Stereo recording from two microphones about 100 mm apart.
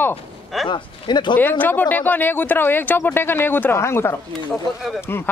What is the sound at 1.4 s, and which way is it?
Speech, 20° left (ahead or behind).